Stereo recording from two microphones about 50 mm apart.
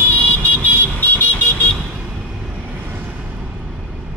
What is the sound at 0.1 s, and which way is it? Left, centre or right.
Vehicle, left.